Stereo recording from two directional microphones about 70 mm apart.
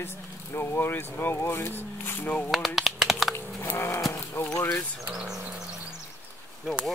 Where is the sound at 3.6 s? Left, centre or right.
Left.